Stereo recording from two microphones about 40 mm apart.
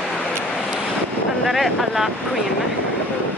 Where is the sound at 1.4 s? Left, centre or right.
Centre.